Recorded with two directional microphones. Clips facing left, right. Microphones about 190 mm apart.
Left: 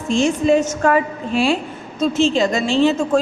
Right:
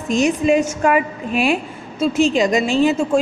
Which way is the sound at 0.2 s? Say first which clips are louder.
Even; 15° right (ahead or behind).